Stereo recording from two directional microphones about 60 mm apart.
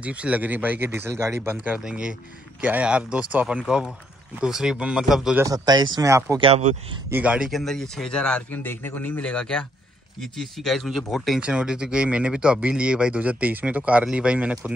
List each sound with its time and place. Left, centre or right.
0.0 s speech: right
0.8 s speech: right
1.8 s speech: centre
5.4 s speech: right
7.3 s speech: centre
7.6 s speech: centre
8.5 s a man's voice: left
9.2 s speech: centre
10.2 s speech: centre
11.4 s speech: centre